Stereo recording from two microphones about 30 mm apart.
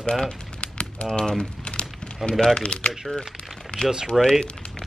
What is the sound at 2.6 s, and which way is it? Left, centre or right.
Speech, left.